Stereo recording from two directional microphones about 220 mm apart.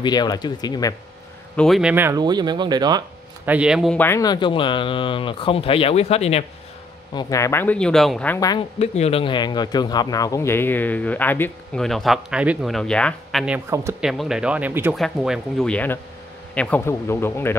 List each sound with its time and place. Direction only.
0.0 s speech: 20° left (ahead or behind)
1.6 s speech: centre (ahead or behind); by 3.0 s 20° right (ahead or behind)
3.4 s speech: 5° right (ahead or behind); by 6.4 s 30° left (ahead or behind)
7.2 s speech: 15° left (ahead or behind)
8.7 s speech: 30° left (ahead or behind); by 17.6 s 10° left (ahead or behind)